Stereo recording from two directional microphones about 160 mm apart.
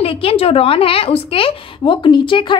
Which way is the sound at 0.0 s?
35° left (ahead or behind).